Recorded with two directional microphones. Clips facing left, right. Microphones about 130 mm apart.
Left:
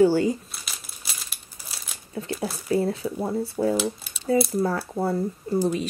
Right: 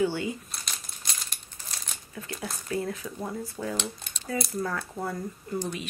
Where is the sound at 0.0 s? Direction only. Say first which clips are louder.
Left 9 dB; 40° left (ahead or behind).